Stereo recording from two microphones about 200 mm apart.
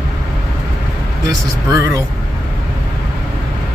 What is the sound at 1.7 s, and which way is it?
Speech, 15° right (ahead or behind).